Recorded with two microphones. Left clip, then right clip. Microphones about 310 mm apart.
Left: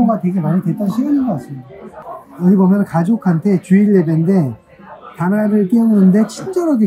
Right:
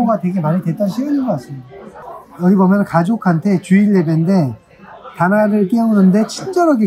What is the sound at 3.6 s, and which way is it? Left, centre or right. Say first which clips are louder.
Speech: left 2 dB; centre.